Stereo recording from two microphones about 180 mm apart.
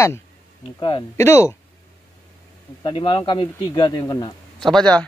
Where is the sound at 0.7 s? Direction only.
25° left (ahead or behind).